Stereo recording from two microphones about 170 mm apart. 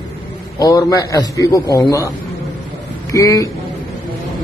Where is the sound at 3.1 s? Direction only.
20° left (ahead or behind).